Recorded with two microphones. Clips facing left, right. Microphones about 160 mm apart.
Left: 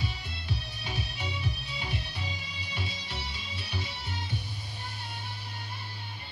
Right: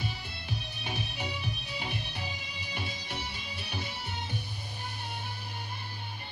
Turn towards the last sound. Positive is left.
turn(degrees=-55)  # may be behind; listen again after turning